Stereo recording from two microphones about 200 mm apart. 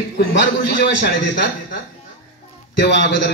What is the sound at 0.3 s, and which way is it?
A man's voice, 60° left (ahead or behind).